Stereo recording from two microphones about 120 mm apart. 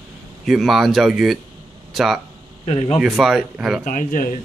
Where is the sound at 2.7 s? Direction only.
55° left (ahead or behind).